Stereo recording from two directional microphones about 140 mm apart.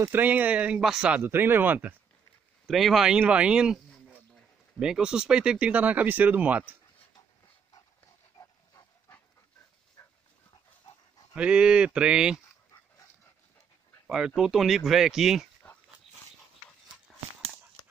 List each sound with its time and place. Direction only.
0.0 s speech: 15° right (ahead or behind)
2.7 s speech: centre (ahead or behind)
8.4 s dog: 25° left (ahead or behind)
11.3 s speech: 10° right (ahead or behind)
14.0 s speech: 5° right (ahead or behind)
15.6 s dog: 5° left (ahead or behind)